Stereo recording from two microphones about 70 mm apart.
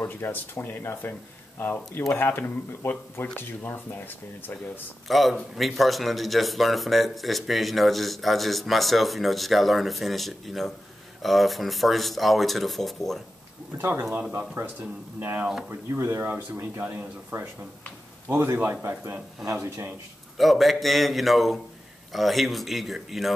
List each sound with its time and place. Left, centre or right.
0.0 s speech: left
5.0 s a man's voice: centre
13.7 s speech: right
20.3 s a man's voice: centre